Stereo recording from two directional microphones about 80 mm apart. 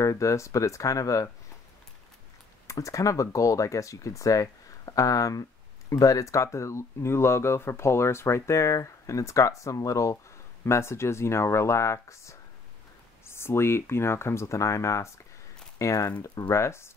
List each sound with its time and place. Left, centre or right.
0.0 s speech: left
2.6 s speech: left